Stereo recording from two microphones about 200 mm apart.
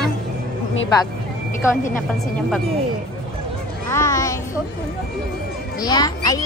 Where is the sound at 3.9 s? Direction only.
15° left (ahead or behind).